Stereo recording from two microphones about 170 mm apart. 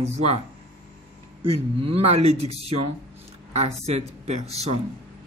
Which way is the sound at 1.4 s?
35° right (ahead or behind).